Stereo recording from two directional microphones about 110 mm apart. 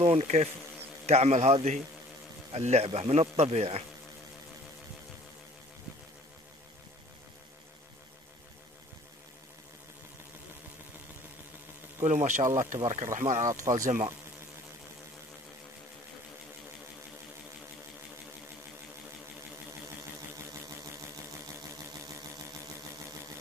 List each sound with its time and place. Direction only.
0.0 s bee: 70° right (ahead or behind)
1.0 s a man's voice: 80° right
12.0 s speech: 90° right
13.5 s speech: 30° right (ahead or behind)